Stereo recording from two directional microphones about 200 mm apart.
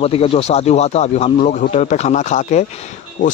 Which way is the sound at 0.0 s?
30° left (ahead or behind).